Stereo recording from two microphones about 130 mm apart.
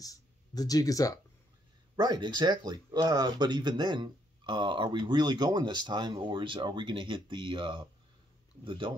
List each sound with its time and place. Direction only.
0.0 s speech: 30° left (ahead or behind)
2.0 s speech: 35° right (ahead or behind)